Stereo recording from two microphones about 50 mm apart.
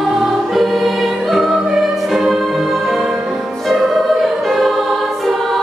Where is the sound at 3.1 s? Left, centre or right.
Centre.